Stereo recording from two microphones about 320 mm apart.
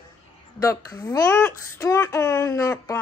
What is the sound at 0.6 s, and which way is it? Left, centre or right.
A child's voice, centre.